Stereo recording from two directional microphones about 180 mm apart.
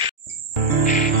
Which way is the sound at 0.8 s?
50° left (ahead or behind).